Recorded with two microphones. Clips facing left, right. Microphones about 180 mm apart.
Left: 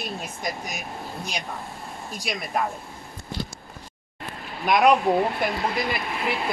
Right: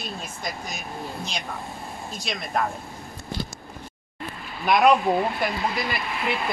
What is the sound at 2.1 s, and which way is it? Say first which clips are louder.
Speech: even; 10° left (ahead or behind).